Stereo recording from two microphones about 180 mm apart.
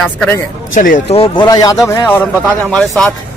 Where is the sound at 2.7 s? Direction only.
Centre (ahead or behind).